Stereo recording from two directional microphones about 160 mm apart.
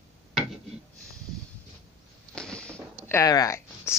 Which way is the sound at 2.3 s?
5° left (ahead or behind).